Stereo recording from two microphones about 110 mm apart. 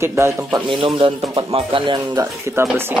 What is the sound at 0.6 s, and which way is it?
Speech, 50° right (ahead or behind).